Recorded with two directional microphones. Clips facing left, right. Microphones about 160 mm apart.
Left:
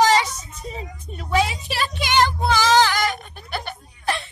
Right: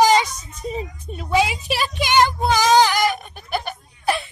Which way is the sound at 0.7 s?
15° right (ahead or behind).